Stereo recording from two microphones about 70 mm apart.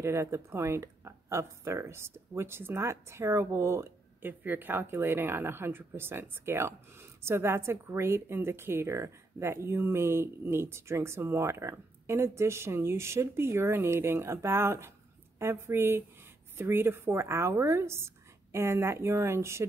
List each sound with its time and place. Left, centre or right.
0.0 s a woman's voice: right
4.2 s a woman's voice: right